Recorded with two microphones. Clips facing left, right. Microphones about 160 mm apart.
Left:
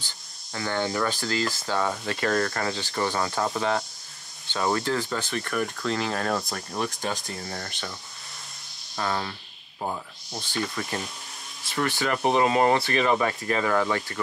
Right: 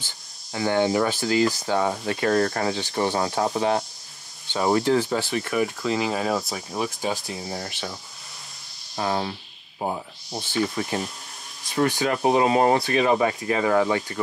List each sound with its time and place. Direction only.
0.5 s speech: 20° right (ahead or behind)
5.5 s speech: 5° right (ahead or behind)
8.9 s speech: 25° right (ahead or behind)